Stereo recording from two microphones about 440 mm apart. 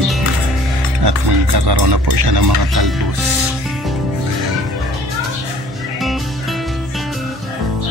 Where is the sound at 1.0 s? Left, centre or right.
Right.